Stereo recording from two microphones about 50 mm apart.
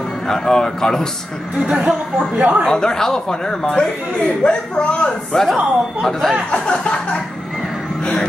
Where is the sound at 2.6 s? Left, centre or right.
Centre.